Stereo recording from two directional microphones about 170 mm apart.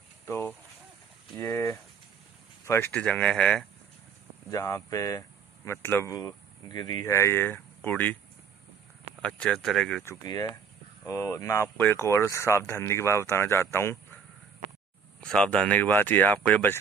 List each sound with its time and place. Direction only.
0.2 s a sound: 15° left (ahead or behind)
1.4 s speech: 15° left (ahead or behind)
4.5 s speech: 20° left (ahead or behind)
9.2 s speech: 5° left (ahead or behind)
10.0 s speech: 20° left (ahead or behind)
15.1 s speech: 5° left (ahead or behind)